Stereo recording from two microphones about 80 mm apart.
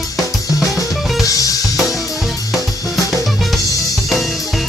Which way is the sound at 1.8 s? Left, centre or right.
Centre.